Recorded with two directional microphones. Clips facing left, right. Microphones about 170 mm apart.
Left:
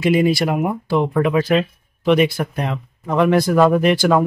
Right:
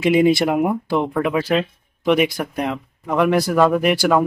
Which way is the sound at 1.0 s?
5° right (ahead or behind).